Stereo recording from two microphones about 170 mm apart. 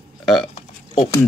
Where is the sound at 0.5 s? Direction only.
35° left (ahead or behind).